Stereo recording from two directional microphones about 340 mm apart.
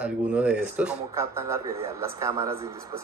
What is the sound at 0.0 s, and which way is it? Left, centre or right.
A man's voice, centre.